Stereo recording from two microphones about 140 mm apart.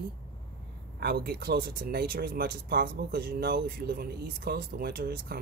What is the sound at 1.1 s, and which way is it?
Speech, 90° right.